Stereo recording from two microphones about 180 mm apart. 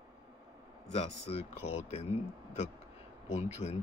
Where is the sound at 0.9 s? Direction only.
35° left (ahead or behind).